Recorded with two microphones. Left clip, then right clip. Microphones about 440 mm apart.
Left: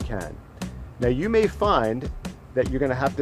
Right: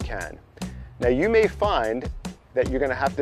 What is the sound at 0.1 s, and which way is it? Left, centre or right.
Music, left.